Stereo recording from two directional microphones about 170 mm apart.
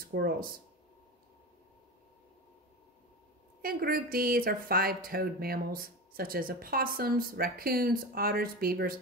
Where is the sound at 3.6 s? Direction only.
60° right (ahead or behind).